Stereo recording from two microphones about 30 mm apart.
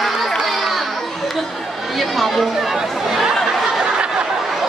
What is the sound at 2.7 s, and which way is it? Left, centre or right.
Chatter, centre.